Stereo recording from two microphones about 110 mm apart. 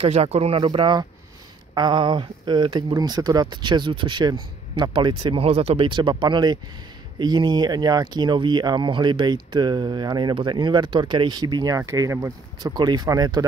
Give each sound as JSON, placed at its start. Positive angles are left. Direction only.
{"t": 0.0, "sound": "speech", "side_deg": -75}
{"t": 4.9, "sound": "speech", "side_deg": -50}
{"t": 5.8, "sound": "speech", "side_deg": -45}